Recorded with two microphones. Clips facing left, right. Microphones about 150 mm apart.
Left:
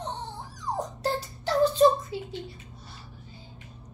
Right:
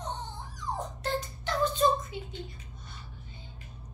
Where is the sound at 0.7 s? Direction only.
35° left (ahead or behind).